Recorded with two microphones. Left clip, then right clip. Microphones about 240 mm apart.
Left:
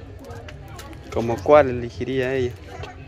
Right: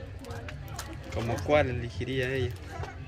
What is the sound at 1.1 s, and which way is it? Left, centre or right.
Speech, centre.